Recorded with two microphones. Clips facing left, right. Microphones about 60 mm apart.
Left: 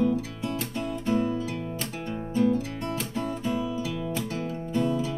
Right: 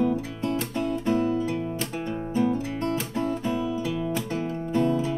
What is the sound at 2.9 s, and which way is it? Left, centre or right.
Music, centre.